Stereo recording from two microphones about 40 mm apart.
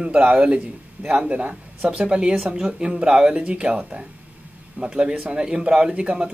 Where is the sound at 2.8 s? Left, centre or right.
Right.